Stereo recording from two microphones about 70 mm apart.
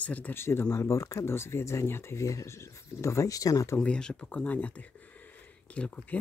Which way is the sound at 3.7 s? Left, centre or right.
Centre.